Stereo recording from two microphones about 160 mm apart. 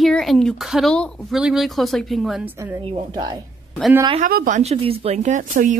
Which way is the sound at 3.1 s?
25° right (ahead or behind).